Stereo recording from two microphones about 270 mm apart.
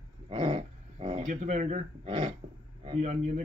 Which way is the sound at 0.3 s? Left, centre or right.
Centre.